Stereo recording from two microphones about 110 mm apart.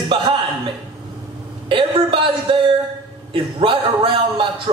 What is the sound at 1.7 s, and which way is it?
A man's voice, 50° right (ahead or behind).